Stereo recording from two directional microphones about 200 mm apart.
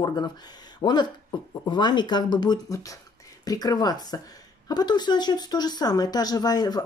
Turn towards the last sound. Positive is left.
turn(degrees=20)  # may be behind; listen again after turning